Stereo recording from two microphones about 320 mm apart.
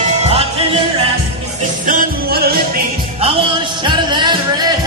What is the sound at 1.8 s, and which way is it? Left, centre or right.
Music, right.